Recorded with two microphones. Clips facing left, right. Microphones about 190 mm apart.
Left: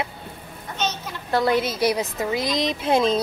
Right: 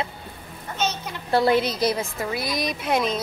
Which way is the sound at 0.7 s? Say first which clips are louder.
Right 1 dB; 10° right (ahead or behind).